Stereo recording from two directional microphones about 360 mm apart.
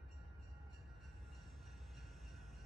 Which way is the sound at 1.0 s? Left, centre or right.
Centre.